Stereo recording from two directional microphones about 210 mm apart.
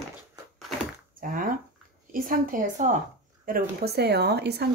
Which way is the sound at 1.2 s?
40° right (ahead or behind).